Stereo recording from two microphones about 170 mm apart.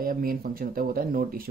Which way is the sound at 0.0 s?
60° right (ahead or behind).